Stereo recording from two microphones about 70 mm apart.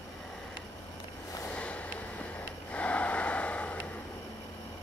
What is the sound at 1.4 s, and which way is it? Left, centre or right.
Vehicle, centre.